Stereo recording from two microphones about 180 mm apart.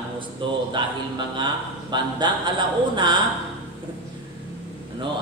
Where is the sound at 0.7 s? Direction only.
25° right (ahead or behind).